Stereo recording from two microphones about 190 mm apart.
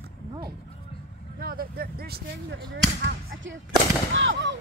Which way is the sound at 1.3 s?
50° right (ahead or behind).